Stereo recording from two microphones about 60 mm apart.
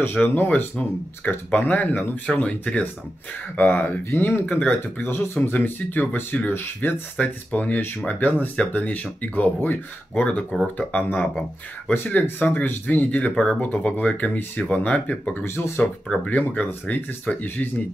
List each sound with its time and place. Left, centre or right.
0.0 s speech: left
3.5 s speech: left
4.5 s speech: left
4.7 s speech: left
15.3 s speech: left
16.1 s speech: left